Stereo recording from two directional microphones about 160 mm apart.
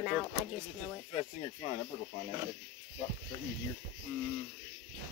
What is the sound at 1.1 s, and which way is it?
Speech, 35° left (ahead or behind).